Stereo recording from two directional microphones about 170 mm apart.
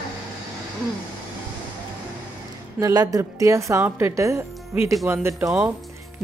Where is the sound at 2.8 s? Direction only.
20° right (ahead or behind).